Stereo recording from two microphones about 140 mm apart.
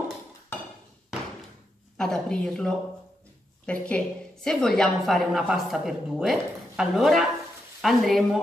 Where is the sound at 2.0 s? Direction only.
5° left (ahead or behind).